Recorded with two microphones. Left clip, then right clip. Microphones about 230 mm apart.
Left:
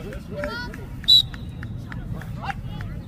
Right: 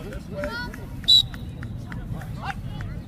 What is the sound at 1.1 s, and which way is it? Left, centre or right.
Vehicle, centre.